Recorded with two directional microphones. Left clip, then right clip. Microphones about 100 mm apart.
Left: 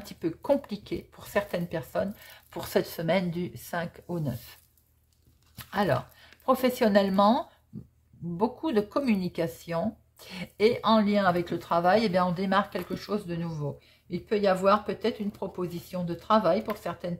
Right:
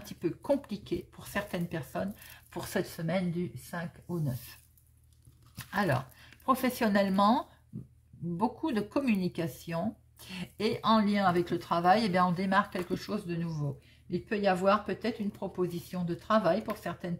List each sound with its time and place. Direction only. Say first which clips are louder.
0.0 s speech: left 3 dB; 30° left (ahead or behind)
2.9 s speech: left 6 dB; 55° left (ahead or behind)
5.6 s speech: left 4 dB; 20° left (ahead or behind)